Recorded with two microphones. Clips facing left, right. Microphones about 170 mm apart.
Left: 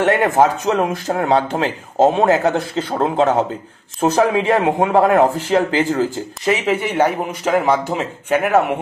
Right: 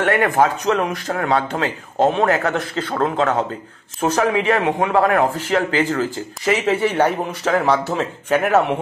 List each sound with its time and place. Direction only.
0.0 s speech: 20° left (ahead or behind)
2.0 s speech: 35° left (ahead or behind)
2.2 s speech: 25° left (ahead or behind)